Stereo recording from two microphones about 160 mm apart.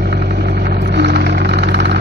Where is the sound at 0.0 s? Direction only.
90° right.